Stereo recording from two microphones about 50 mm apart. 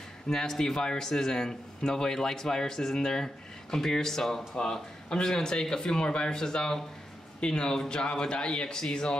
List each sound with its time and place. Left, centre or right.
0.3 s a man's voice: centre